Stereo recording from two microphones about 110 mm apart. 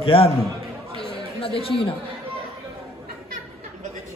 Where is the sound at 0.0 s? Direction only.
55° left (ahead or behind).